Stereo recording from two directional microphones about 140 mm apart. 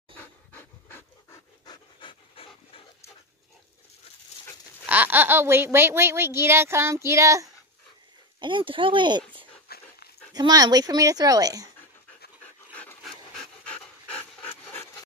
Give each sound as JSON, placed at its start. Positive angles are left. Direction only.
{"t": 0.2, "sound": "pant", "side_deg": 15}
{"t": 1.7, "sound": "pant", "side_deg": 35}
{"t": 4.8, "sound": "speech", "side_deg": -10}
{"t": 8.4, "sound": "speech", "side_deg": -35}
{"t": 9.7, "sound": "dog", "side_deg": 90}
{"t": 10.3, "sound": "speech", "side_deg": -25}
{"t": 13.7, "sound": "pant", "side_deg": 10}
{"t": 14.7, "sound": "wood", "side_deg": 15}